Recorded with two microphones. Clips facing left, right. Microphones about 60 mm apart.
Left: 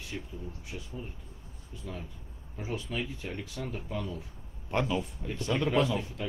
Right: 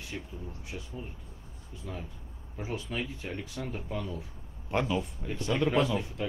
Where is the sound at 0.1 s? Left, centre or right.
Centre.